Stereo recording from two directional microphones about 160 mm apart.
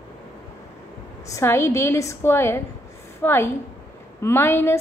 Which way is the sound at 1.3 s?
15° left (ahead or behind).